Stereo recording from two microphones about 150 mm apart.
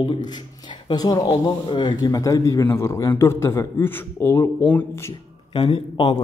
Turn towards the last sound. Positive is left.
turn(degrees=30)  # may be behind; listen again after turning